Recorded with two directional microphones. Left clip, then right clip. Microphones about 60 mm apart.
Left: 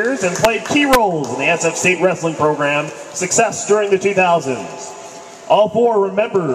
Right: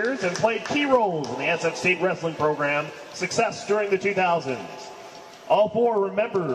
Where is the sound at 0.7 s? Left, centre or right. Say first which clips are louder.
Left 7 dB; right.